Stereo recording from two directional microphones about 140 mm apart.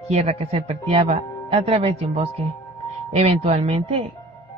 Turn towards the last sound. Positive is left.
turn(degrees=-50)  # may be behind; listen again after turning